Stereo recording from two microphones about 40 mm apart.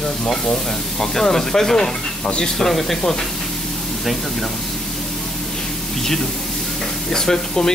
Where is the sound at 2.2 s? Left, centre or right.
Left.